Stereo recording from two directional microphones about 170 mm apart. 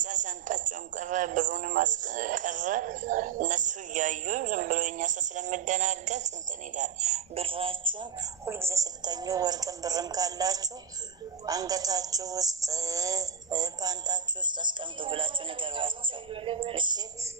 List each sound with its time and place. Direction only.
0.0 s speech: 50° right (ahead or behind); by 8.3 s 30° right (ahead or behind)
8.5 s a woman's voice: 15° right (ahead or behind)